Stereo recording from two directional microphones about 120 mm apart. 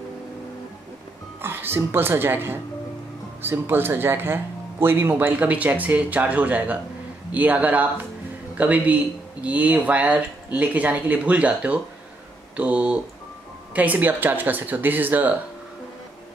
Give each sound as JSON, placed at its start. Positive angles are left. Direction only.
{"t": 1.4, "sound": "a woman's voice", "side_deg": -20}